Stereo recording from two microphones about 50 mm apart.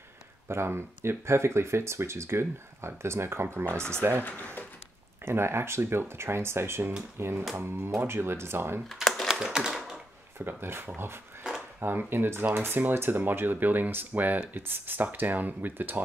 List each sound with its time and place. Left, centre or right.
0.5 s speech: right
4.2 s speech: left
5.2 s speech: right
9.0 s typing: centre
9.3 s typewriter: centre
9.7 s typing: centre
10.4 s speech: right
12.1 s speech: right